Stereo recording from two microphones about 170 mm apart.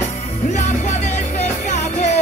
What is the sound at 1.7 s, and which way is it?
Music, 45° left (ahead or behind).